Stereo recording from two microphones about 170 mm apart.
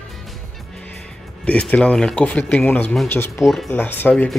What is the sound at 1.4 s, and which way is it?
Speech, 5° left (ahead or behind).